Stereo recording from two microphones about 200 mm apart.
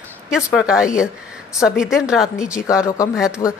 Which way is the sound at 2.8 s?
15° left (ahead or behind).